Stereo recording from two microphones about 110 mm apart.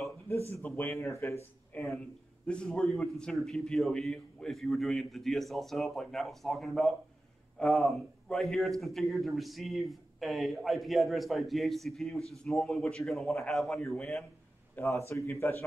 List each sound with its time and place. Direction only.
0.5 s a man's voice: 20° left (ahead or behind); by 14.2 s 5° left (ahead or behind)
14.8 s speech: 25° left (ahead or behind)